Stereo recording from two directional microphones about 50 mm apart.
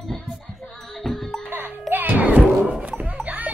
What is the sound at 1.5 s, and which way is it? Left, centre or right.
Music, right.